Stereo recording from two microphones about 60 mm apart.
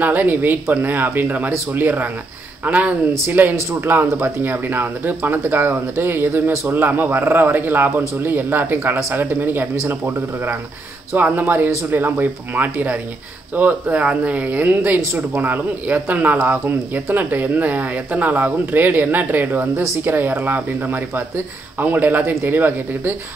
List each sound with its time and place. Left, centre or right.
0.0 s speech: right
6.5 s a man's voice: right
6.8 s speech: right